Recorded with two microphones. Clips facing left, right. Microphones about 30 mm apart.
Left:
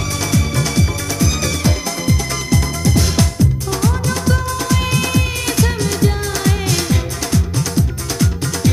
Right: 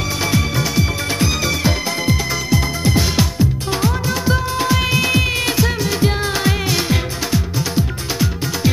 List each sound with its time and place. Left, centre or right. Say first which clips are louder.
0.2 s music: even; centre
5.9 s music: even; right